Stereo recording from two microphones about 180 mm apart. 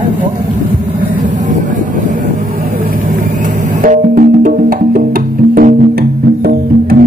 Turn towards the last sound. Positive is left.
turn(degrees=-55)  # may be behind; listen again after turning